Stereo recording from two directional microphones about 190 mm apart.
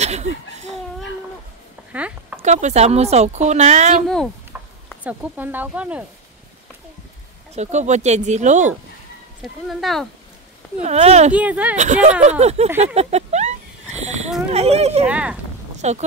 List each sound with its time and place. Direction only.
0.0 s a sound: 35° right (ahead or behind)
1.9 s a sound: 5° right (ahead or behind)
2.4 s speech: 35° right (ahead or behind)
5.0 s speech: 10° right (ahead or behind)
7.5 s speech: 35° right (ahead or behind)
9.4 s speech: centre (ahead or behind)
10.8 s speech: 35° right (ahead or behind)
11.3 s speech: 5° right (ahead or behind)
11.7 s speech: 40° right (ahead or behind)
12.7 s a sound: 35° right (ahead or behind)
14.5 s speech: 35° right (ahead or behind)
15.0 s speech: 5° right (ahead or behind)
15.8 s speech: 35° right (ahead or behind)